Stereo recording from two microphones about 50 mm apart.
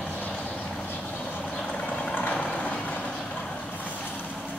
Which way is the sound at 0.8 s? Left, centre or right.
Left.